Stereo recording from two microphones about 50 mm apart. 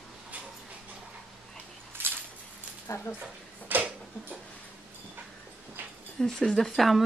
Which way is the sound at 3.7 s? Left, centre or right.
Right.